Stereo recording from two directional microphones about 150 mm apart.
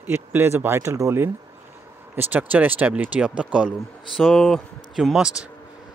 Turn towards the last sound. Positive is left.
turn(degrees=-5)  # may be behind; listen again after turning